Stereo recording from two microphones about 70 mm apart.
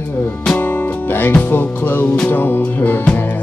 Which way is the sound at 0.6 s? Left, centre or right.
Left.